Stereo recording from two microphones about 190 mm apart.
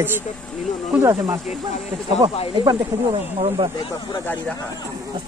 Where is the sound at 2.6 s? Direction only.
30° right (ahead or behind).